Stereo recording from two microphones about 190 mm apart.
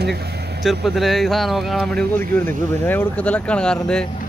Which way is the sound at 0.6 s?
Centre (ahead or behind).